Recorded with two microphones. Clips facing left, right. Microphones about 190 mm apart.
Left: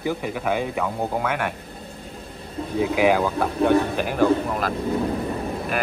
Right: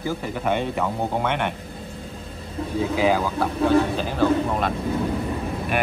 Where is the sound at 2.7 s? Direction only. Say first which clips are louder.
Left 2 dB; 15° left (ahead or behind).